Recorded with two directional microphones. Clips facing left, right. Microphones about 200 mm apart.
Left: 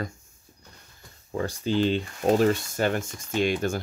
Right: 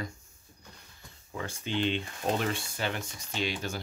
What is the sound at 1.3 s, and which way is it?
Speech, 40° left (ahead or behind).